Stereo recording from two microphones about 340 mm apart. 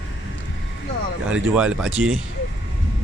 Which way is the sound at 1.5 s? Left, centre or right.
Centre.